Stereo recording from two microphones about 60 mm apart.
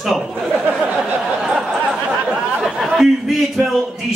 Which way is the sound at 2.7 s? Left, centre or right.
Centre.